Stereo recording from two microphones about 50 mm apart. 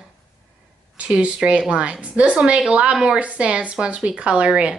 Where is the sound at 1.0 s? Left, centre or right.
Right.